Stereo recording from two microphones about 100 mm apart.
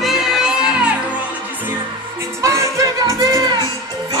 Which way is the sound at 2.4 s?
30° right (ahead or behind).